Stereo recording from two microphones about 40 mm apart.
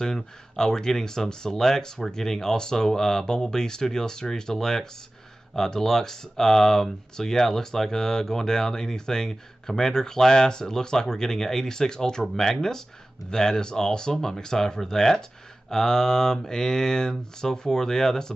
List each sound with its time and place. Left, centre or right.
0.0 s speech: centre